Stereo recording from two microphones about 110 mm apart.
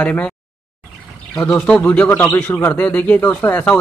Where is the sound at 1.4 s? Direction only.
10° left (ahead or behind).